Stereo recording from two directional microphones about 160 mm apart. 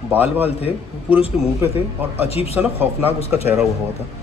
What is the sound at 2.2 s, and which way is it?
Speech, 40° left (ahead or behind).